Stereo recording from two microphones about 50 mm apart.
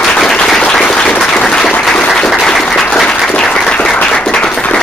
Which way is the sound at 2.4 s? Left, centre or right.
Centre.